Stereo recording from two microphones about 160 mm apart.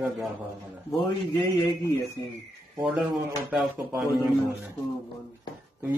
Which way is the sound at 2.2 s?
25° left (ahead or behind).